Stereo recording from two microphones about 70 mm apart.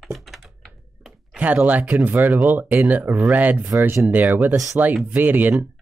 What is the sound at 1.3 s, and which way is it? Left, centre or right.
Speech, right.